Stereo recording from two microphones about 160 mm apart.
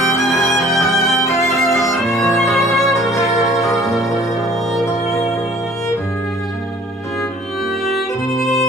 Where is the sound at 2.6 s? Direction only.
20° left (ahead or behind).